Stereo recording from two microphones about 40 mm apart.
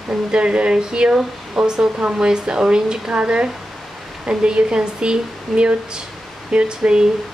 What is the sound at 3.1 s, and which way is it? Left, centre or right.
Speech, right.